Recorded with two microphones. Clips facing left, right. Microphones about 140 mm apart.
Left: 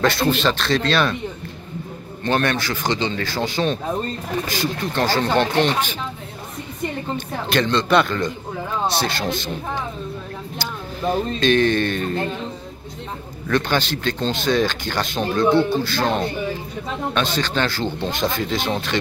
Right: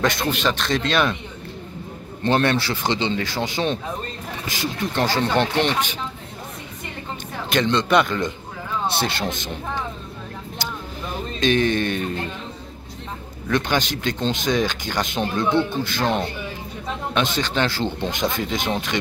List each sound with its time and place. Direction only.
0.0 s speech: 15° right (ahead or behind)
2.2 s speech: 25° right (ahead or behind)
7.5 s speech: 15° right (ahead or behind)
11.3 s speech: 15° right (ahead or behind)
13.5 s speech: 15° right (ahead or behind)